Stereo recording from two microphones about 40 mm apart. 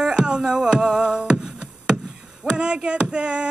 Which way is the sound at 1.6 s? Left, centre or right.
Right.